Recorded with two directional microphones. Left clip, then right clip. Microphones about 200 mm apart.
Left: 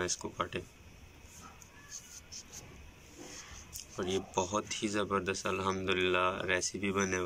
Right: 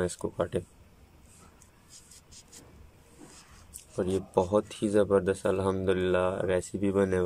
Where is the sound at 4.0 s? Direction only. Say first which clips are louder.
Right 6 dB; 35° right (ahead or behind).